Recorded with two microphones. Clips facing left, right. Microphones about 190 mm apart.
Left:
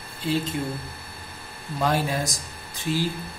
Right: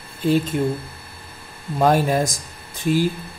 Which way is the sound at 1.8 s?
50° right (ahead or behind).